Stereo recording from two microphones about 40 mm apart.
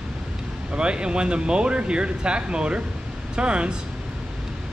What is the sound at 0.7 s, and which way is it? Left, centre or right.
Speech, right.